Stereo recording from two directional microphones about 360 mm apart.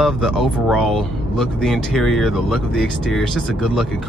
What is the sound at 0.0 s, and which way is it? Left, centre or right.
Speech, centre.